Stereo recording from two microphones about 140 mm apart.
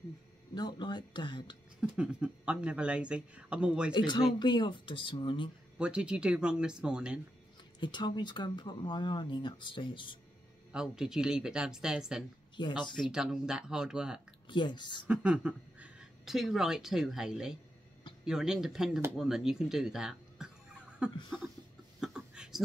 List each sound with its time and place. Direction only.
0.6 s speech: 30° left (ahead or behind)
1.8 s speech: 10° right (ahead or behind)
3.9 s speech: 30° left (ahead or behind)
5.8 s speech: 5° right (ahead or behind)
7.8 s speech: 35° left (ahead or behind)
10.7 s speech: 5° right (ahead or behind)
12.5 s speech: 35° left (ahead or behind)
12.9 s speech: 5° right (ahead or behind)
14.5 s speech: 35° left (ahead or behind)
15.0 s speech: 10° right (ahead or behind)
22.0 s a sound: 5° right (ahead or behind)